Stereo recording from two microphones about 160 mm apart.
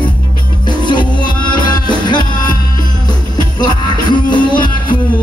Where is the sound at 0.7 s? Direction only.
30° left (ahead or behind).